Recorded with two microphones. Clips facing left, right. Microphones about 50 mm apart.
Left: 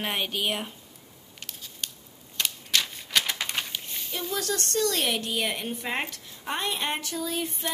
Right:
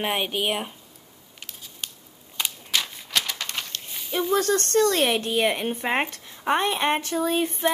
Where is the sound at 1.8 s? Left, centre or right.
Centre.